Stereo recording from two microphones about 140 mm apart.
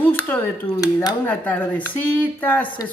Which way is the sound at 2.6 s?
35° left (ahead or behind).